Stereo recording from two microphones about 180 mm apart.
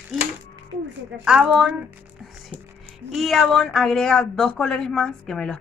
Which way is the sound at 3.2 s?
Centre (ahead or behind).